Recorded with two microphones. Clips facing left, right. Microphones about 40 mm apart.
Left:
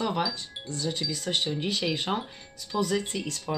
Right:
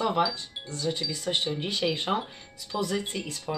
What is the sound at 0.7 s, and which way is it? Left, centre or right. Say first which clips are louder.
Speech: right 1 dB; centre.